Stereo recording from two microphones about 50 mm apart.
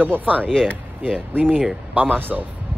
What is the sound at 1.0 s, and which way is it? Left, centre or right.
Speech, right.